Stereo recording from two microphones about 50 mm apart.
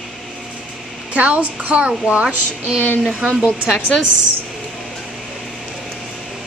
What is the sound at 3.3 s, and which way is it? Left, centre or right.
Speech, centre.